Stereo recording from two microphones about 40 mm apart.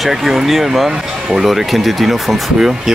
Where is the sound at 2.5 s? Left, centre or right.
Centre.